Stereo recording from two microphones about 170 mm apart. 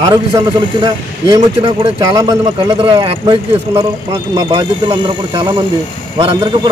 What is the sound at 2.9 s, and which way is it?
Speech, 30° right (ahead or behind).